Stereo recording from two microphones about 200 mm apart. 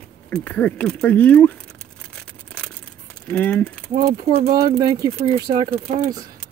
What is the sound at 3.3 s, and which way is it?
Speech, 10° left (ahead or behind).